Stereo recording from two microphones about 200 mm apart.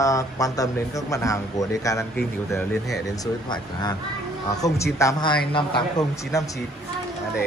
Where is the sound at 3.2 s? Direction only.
20° left (ahead or behind).